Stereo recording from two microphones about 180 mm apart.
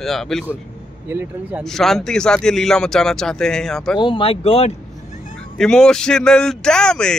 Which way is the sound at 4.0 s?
30° left (ahead or behind).